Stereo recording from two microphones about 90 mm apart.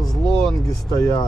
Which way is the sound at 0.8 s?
35° left (ahead or behind).